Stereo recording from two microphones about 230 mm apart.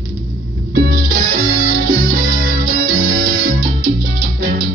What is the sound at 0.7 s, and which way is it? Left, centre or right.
Music, right.